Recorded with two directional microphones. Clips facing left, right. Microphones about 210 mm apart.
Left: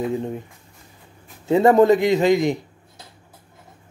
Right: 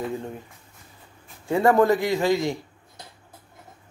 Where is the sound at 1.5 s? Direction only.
20° left (ahead or behind).